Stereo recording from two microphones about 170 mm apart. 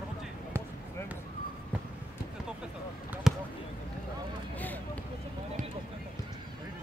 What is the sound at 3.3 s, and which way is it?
Basketball bounce, centre (ahead or behind).